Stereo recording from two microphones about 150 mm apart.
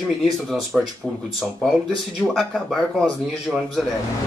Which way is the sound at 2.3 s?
Centre (ahead or behind).